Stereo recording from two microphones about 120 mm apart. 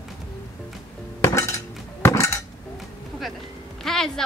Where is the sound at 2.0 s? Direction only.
25° left (ahead or behind).